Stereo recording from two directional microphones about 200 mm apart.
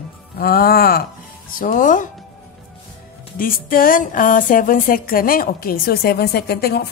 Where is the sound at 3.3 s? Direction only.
45° left (ahead or behind).